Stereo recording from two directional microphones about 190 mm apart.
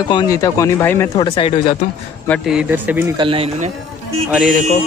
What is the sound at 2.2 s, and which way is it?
Speech, 5° left (ahead or behind).